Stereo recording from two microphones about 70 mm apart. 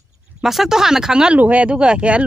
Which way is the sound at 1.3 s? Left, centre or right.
Right.